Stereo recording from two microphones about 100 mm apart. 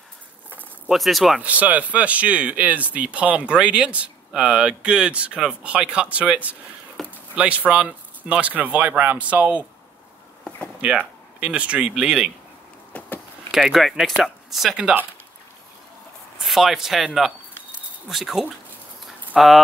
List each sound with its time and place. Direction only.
0.8 s speech: centre (ahead or behind)
1.4 s speech: 15° right (ahead or behind)
7.0 s a sound: centre (ahead or behind)
7.3 s speech: 10° right (ahead or behind)
10.8 s speech: 10° right (ahead or behind)
12.9 s vehicle: 20° left (ahead or behind)
13.5 s speech: centre (ahead or behind)
16.3 s speech: centre (ahead or behind)